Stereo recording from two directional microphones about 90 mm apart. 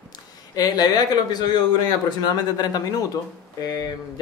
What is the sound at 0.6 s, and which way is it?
Speech, 50° left (ahead or behind).